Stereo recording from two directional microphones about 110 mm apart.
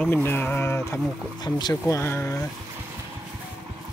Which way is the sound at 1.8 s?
25° left (ahead or behind).